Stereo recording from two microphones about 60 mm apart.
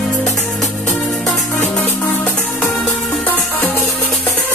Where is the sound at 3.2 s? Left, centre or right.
Left.